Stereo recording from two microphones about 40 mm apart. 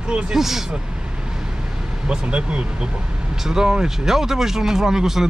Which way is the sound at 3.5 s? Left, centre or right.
Centre.